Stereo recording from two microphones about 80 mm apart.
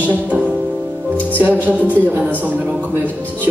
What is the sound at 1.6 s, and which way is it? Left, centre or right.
Speech, right.